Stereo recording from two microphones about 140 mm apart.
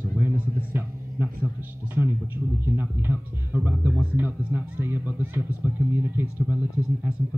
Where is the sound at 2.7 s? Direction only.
15° right (ahead or behind).